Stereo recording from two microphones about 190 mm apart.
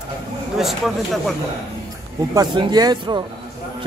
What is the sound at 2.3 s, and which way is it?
Speech, 20° right (ahead or behind).